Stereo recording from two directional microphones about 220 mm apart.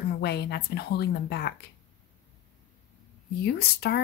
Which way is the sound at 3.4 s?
45° left (ahead or behind).